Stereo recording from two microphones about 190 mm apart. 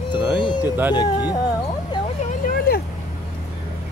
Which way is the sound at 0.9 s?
20° left (ahead or behind).